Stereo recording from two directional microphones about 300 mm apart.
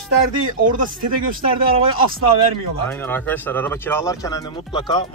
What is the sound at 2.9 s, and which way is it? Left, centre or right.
A man's voice, centre.